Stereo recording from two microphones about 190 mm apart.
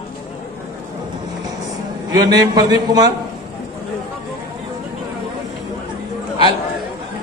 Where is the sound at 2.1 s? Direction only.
20° right (ahead or behind).